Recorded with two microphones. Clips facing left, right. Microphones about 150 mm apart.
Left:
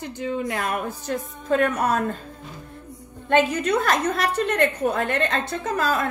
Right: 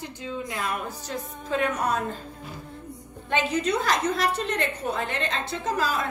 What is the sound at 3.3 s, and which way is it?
A woman's voice, 55° left (ahead or behind).